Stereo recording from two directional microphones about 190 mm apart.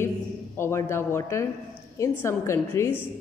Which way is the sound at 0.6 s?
15° left (ahead or behind).